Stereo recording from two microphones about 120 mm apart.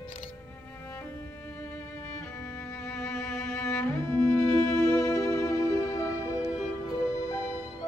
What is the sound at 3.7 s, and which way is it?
Cello, 15° left (ahead or behind).